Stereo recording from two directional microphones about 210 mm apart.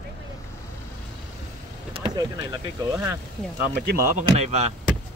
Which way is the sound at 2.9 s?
15° right (ahead or behind).